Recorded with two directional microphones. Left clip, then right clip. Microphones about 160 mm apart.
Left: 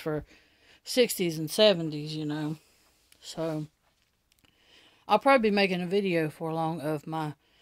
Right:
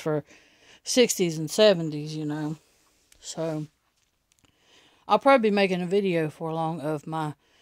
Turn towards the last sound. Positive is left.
turn(degrees=-35)  # may be behind; listen again after turning